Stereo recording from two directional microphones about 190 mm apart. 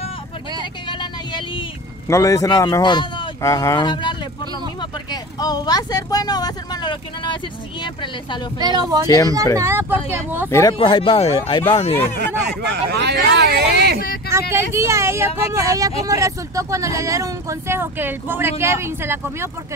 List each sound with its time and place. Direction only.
0.8 s vehicle: 25° left (ahead or behind)
2.0 s speech: 15° left (ahead or behind)
8.5 s speech: 20° right (ahead or behind)
9.0 s speech: 20° left (ahead or behind)
9.6 s speech: 15° right (ahead or behind)
10.5 s speech: 15° left (ahead or behind)
12.2 s speech: 60° right (ahead or behind)
14.5 s speech: 15° right (ahead or behind)